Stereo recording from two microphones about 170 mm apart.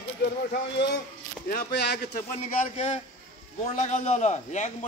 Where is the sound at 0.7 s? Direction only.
80° left.